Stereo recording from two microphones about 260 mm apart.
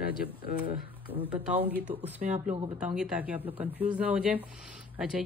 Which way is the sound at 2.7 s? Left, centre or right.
Centre.